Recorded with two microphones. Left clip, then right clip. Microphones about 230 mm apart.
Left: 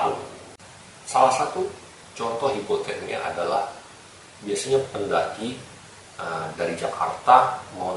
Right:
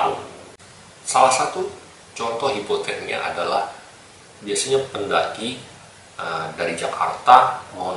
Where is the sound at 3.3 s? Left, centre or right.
Left.